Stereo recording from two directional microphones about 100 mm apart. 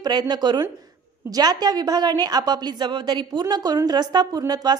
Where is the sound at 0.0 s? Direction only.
45° right (ahead or behind).